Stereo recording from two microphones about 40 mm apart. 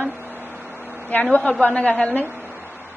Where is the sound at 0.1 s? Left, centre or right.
Right.